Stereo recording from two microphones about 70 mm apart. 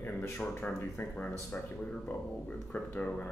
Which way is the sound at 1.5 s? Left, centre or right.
Centre.